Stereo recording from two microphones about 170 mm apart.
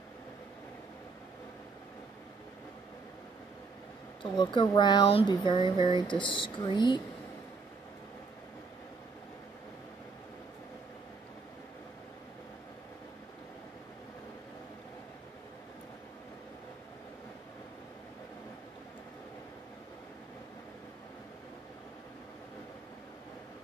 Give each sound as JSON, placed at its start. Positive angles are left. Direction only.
{"t": 4.2, "sound": "speech", "side_deg": 25}